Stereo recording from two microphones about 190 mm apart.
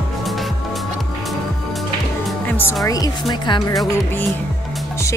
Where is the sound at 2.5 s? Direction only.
10° left (ahead or behind).